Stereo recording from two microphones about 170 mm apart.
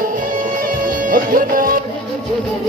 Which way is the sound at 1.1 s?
55° right (ahead or behind).